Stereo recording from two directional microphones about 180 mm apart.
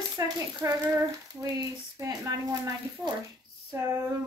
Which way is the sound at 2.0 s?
20° right (ahead or behind).